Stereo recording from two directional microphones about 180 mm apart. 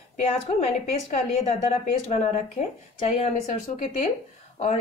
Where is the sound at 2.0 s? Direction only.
35° left (ahead or behind).